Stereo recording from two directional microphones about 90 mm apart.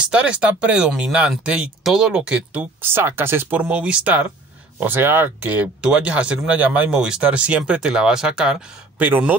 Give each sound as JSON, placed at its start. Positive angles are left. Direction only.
{"t": 0.1, "sound": "speech", "side_deg": -10}